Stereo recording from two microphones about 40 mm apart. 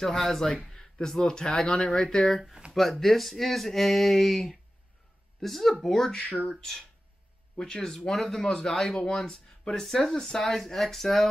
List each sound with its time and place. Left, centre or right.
0.0 s speech: centre
2.0 s speech: centre